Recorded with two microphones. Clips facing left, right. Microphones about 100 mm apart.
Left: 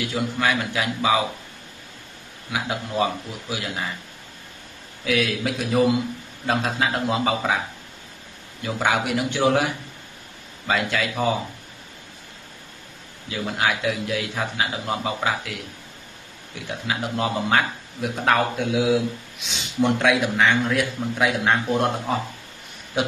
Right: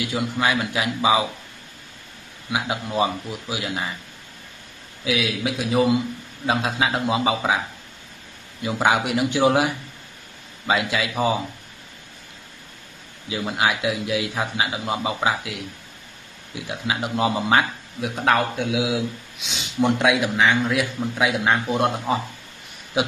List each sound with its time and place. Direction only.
0.1 s a man's voice: 15° right (ahead or behind)
2.5 s a man's voice: 15° right (ahead or behind)
5.0 s a man's voice: 5° right (ahead or behind)
8.6 s a man's voice: 15° right (ahead or behind)
10.7 s a man's voice: 10° right (ahead or behind)
13.3 s a man's voice: 10° right (ahead or behind)
16.6 s a man's voice: 15° right (ahead or behind)
18.0 s a man's voice: centre (ahead or behind)